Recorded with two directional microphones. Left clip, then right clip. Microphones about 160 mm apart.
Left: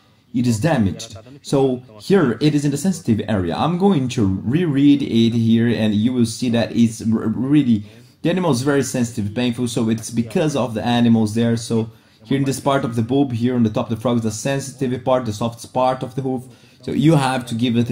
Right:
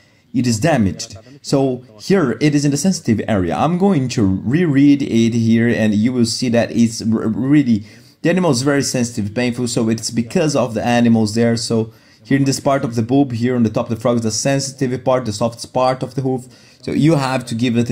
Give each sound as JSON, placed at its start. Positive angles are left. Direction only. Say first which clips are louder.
{"t": 0.3, "sound": "speech", "louder": "right 3 dB", "side_deg": -40}